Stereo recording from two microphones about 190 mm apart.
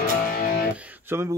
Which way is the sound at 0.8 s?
10° right (ahead or behind).